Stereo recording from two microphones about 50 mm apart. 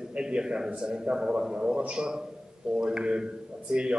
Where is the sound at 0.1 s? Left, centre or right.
Centre.